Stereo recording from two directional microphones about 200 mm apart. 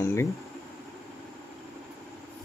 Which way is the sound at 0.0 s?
15° left (ahead or behind).